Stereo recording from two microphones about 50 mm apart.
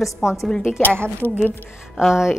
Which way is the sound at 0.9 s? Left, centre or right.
Right.